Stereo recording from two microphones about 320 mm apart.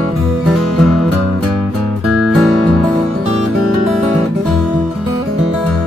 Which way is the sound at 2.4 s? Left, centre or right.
Centre.